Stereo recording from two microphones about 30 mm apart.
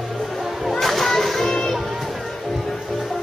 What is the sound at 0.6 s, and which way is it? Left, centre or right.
Music, centre.